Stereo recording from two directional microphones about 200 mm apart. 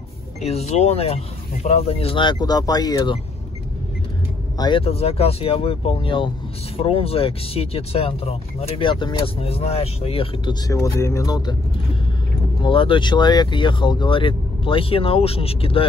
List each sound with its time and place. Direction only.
0.4 s speech: 30° left (ahead or behind)
4.6 s speech: 25° left (ahead or behind)